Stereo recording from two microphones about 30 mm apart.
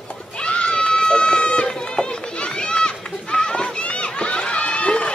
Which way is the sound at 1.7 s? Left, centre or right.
Left.